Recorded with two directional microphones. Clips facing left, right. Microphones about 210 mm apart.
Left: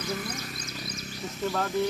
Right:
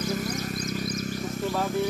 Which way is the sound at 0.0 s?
40° right (ahead or behind).